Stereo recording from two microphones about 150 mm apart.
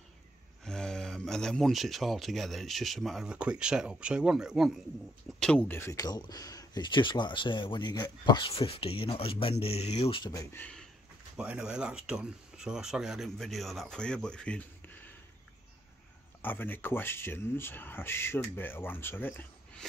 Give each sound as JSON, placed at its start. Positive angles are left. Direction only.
{"t": 0.7, "sound": "speech", "side_deg": 5}
{"t": 5.4, "sound": "speech", "side_deg": 10}
{"t": 10.3, "sound": "speech", "side_deg": 15}
{"t": 11.3, "sound": "speech", "side_deg": -5}
{"t": 16.4, "sound": "speech", "side_deg": 15}